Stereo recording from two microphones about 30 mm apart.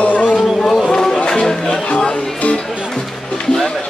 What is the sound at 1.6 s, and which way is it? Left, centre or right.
Music, left.